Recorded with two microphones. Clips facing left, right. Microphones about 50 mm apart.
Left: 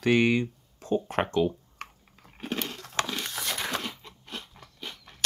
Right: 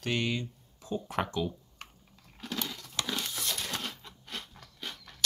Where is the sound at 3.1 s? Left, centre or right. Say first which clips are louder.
Left 1 dB; left.